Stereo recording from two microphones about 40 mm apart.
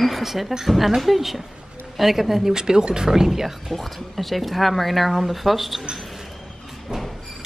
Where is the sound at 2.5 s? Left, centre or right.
Centre.